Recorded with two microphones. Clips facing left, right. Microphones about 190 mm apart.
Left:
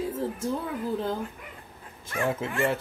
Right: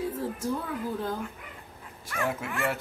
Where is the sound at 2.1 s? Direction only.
25° left (ahead or behind).